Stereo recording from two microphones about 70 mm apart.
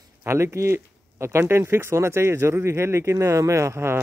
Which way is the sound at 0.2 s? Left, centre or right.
Right.